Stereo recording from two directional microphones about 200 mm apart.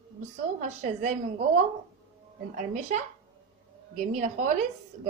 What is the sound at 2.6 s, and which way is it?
Speech, 35° right (ahead or behind).